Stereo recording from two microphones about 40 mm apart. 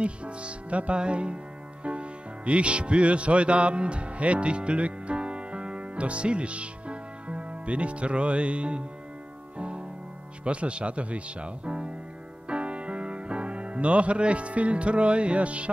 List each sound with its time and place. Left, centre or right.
0.0 s speech: right
9.6 s music: right
10.4 s speech: right
12.4 s music: right